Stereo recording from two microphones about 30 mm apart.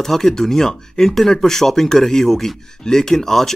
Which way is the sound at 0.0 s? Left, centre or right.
Centre.